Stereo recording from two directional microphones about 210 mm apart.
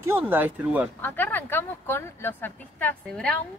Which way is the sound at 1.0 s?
10° left (ahead or behind).